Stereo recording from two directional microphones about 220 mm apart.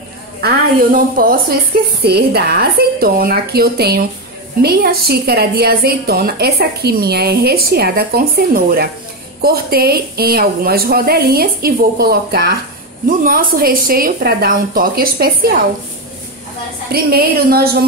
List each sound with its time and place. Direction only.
0.9 s a woman's voice: 40° right (ahead or behind)
16.9 s a woman's voice: 45° right (ahead or behind)